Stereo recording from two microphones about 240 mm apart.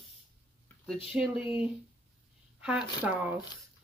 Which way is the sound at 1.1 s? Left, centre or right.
Centre.